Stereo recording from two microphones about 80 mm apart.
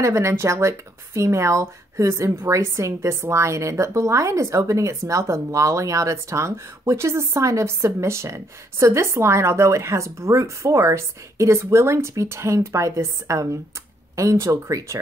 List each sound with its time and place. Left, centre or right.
0.0 s speech: right